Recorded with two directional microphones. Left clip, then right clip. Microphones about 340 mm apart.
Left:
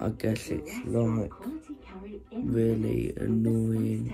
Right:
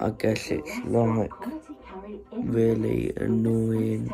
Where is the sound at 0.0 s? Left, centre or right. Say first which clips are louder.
Right 6 dB; centre.